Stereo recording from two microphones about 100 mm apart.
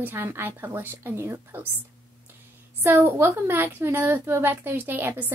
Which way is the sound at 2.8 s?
20° right (ahead or behind).